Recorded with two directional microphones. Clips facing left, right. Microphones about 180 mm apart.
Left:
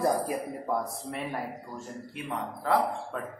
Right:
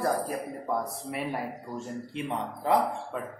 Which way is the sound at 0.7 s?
Centre (ahead or behind).